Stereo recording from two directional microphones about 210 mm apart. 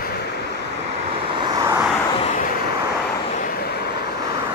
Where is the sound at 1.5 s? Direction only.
15° right (ahead or behind).